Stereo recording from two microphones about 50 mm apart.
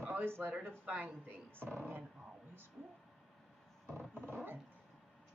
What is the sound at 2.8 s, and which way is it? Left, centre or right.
Speech, centre.